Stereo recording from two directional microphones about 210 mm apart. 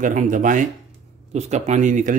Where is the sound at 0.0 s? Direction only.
40° right (ahead or behind).